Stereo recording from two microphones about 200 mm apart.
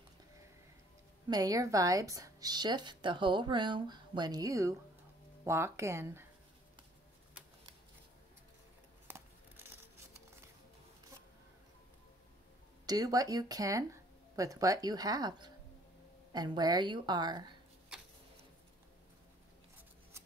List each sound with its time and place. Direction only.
1.3 s speech: 20° right (ahead or behind)
9.0 s a sound: 10° right (ahead or behind)
12.8 s speech: 20° right (ahead or behind)